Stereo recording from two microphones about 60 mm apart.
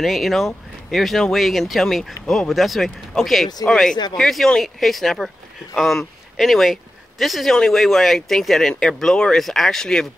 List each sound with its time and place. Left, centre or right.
0.0 s speech: centre